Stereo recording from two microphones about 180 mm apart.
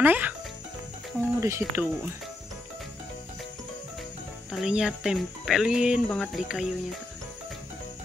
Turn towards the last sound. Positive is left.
turn(degrees=0)  # may be behind; listen again after turning